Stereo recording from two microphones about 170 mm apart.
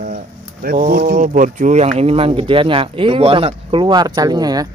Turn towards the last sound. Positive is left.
turn(degrees=-20)  # may be behind; listen again after turning